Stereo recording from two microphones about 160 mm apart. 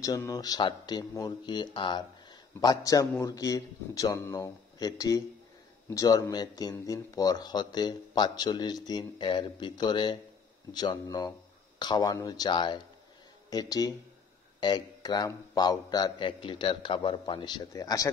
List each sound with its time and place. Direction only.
0.3 s a man's voice: 25° left (ahead or behind)